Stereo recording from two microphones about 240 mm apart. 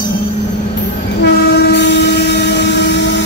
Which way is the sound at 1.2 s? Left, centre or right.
Left.